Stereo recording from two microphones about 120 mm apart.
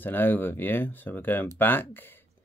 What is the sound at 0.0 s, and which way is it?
Speech, 15° left (ahead or behind).